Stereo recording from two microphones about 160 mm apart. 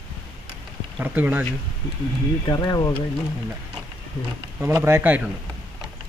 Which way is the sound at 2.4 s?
25° left (ahead or behind).